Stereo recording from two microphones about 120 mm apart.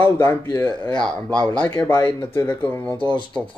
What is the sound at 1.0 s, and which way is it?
Speech, 10° left (ahead or behind).